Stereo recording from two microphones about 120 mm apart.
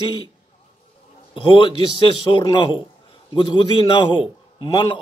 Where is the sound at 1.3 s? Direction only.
45° left (ahead or behind).